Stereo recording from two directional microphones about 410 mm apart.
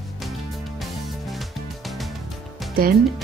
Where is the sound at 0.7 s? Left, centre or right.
Centre.